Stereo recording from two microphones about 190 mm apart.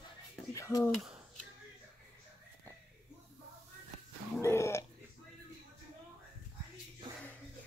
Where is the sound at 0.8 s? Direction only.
Centre (ahead or behind).